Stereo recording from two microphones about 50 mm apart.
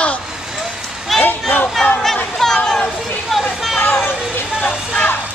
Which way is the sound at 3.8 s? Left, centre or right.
Left.